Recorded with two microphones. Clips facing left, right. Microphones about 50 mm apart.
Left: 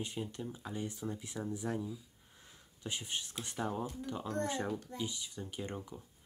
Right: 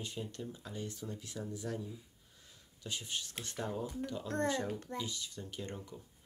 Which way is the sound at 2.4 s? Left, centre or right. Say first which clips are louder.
Left 2 dB; left.